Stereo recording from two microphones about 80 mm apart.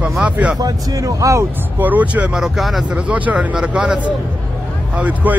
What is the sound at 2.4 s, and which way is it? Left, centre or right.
Speech, centre.